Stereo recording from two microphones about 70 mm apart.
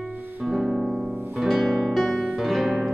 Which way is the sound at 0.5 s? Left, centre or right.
Centre.